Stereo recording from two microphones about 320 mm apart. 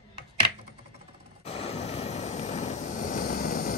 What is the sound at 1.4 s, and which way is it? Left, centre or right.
Vehicle, centre.